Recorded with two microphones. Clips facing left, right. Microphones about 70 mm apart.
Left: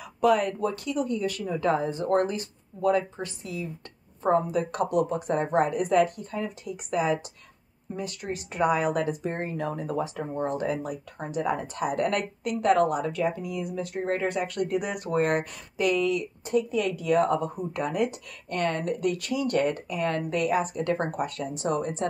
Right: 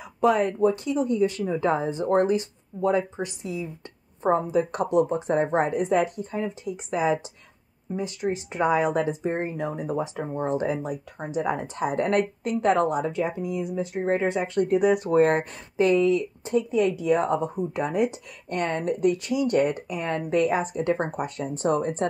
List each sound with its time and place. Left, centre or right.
0.0 s speech: right
21.5 s speech: right